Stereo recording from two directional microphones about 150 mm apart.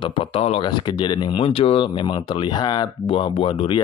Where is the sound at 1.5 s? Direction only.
40° left (ahead or behind).